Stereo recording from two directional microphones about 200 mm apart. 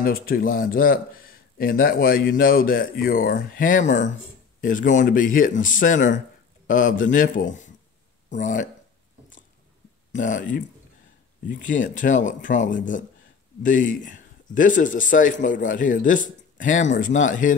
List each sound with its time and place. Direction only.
0.0 s speech: 45° left (ahead or behind)
10.1 s speech: 40° left (ahead or behind)